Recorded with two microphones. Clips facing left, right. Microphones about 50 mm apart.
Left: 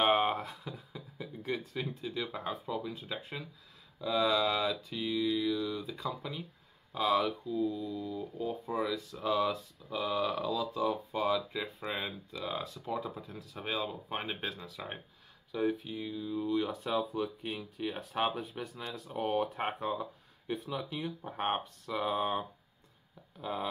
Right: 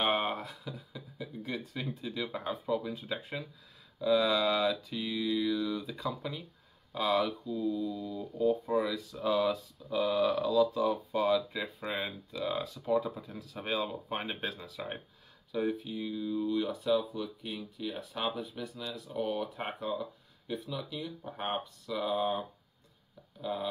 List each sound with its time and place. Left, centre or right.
0.0 s a sound: centre
2.6 s speech: centre; by 16.7 s left
16.8 s speech: left
23.4 s speech: left